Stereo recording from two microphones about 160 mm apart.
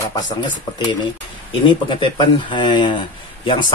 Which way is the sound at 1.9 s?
30° left (ahead or behind).